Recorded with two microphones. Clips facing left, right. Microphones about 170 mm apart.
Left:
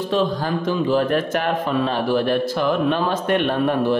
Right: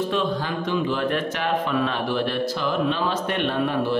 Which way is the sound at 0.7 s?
40° left (ahead or behind).